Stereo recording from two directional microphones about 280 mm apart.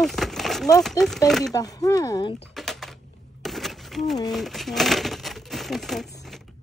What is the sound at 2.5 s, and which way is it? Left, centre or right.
Typing, centre.